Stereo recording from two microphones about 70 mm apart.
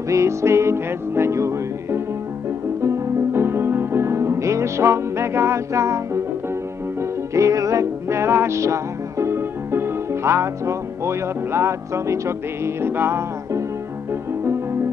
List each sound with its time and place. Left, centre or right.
0.1 s music: right
14.4 s music: right